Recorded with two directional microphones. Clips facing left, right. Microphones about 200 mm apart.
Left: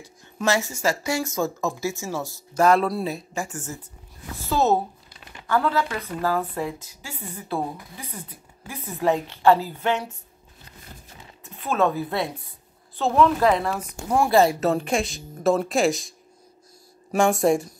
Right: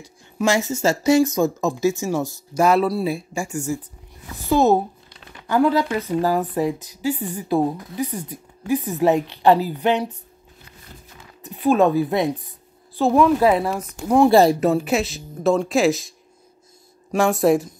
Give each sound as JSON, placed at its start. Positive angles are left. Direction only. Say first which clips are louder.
{"t": 0.0, "sound": "speech", "louder": "right 4 dB", "side_deg": -15}
{"t": 11.4, "sound": "a woman's voice", "louder": "right 6 dB", "side_deg": -15}
{"t": 14.3, "sound": "speech", "louder": "right 1 dB", "side_deg": -35}
{"t": 14.6, "sound": "speech", "louder": "right 3 dB", "side_deg": -5}
{"t": 17.1, "sound": "speech", "louder": "right 2 dB", "side_deg": 0}